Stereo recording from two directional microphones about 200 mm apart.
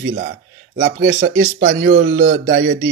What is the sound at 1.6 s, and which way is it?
Speech, 45° right (ahead or behind).